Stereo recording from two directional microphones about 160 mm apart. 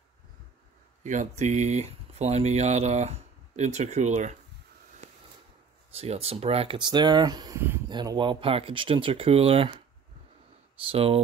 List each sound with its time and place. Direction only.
1.0 s speech: 50° right (ahead or behind)
5.9 s speech: 40° right (ahead or behind)
10.9 s speech: 35° right (ahead or behind)